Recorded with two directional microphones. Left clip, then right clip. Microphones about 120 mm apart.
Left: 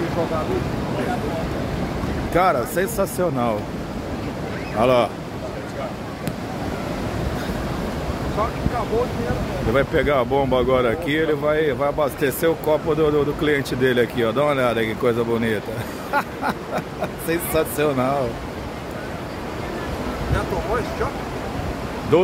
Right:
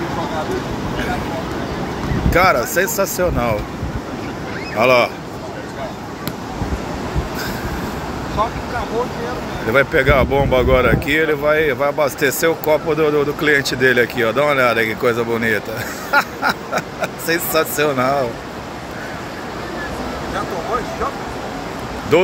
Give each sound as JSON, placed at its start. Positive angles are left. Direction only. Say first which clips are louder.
{"t": 2.3, "sound": "speech", "louder": "right 5 dB", "side_deg": 15}
{"t": 4.7, "sound": "speech", "louder": "right 4 dB", "side_deg": 20}
{"t": 9.7, "sound": "speech", "louder": "right 5 dB", "side_deg": 5}
{"t": 22.1, "sound": "speech", "louder": "right 3 dB", "side_deg": 10}